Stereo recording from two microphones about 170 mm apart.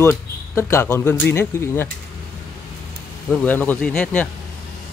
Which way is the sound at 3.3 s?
5° left (ahead or behind).